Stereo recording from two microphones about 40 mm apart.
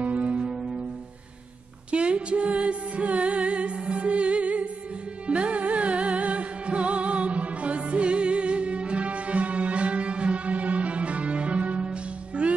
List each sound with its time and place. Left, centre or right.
0.0 s music: right
1.9 s music: right